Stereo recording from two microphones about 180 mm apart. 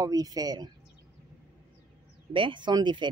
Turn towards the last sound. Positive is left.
turn(degrees=-25)  # may be behind; listen again after turning